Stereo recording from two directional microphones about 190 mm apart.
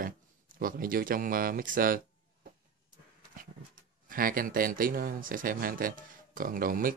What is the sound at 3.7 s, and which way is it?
Speech, 50° right (ahead or behind).